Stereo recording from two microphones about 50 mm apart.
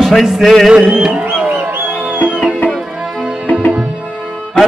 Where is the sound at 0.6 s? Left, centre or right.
Centre.